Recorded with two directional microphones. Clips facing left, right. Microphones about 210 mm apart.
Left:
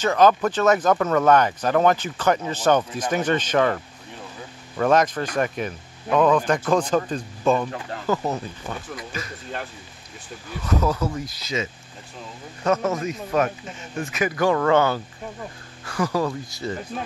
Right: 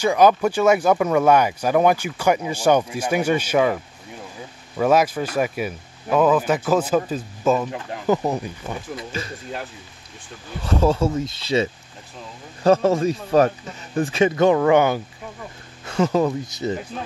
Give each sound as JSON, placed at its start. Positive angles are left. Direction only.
{"t": 0.0, "sound": "speech", "side_deg": -10}
{"t": 8.9, "sound": "speech", "side_deg": -30}
{"t": 10.6, "sound": "speech", "side_deg": -30}